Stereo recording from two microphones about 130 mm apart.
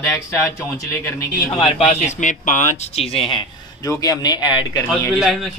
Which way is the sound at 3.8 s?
25° left (ahead or behind).